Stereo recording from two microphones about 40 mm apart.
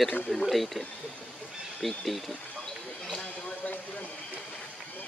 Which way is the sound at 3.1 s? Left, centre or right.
Left.